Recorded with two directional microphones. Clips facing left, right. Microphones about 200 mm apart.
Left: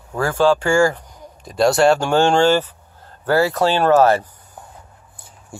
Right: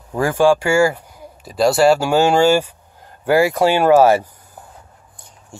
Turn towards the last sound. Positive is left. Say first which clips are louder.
# right 2 dB
turn(degrees=-10)  # may be behind; listen again after turning